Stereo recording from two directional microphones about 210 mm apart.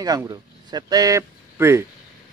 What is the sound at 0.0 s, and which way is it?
Speech, 15° right (ahead or behind).